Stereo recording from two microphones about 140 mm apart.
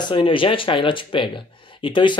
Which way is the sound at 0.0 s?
35° left (ahead or behind).